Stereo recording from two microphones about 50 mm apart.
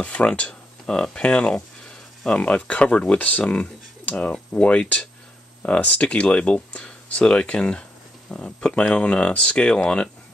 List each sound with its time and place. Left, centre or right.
0.0 s speech: left